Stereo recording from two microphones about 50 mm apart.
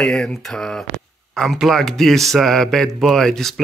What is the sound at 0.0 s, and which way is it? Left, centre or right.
Speech, centre.